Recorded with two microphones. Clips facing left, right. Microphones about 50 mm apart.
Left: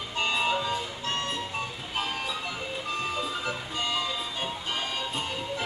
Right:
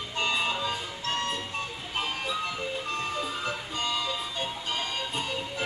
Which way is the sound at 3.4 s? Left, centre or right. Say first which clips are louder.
Even; centre.